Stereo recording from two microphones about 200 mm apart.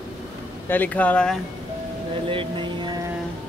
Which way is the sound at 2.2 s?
25° right (ahead or behind).